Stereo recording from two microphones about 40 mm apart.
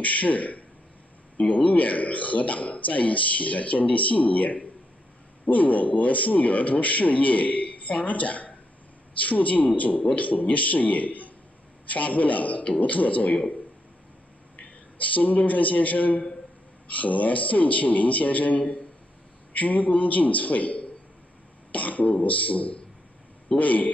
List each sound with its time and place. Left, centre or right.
0.0 s a man's voice: left
15.0 s a man's voice: left